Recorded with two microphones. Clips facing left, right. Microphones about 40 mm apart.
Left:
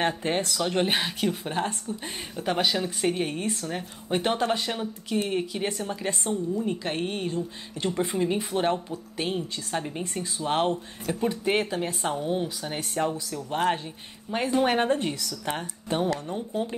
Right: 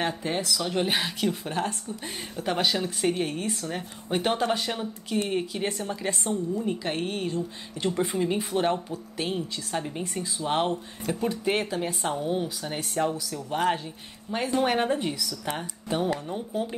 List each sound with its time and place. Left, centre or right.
0.0 s speech: left
2.4 s speech: centre
7.2 s speech: centre
7.9 s speech: centre